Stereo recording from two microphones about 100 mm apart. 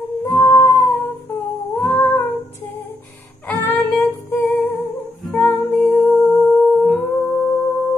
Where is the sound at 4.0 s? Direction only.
20° left (ahead or behind).